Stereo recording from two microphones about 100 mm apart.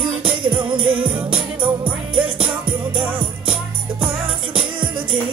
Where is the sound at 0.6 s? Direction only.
60° right (ahead or behind).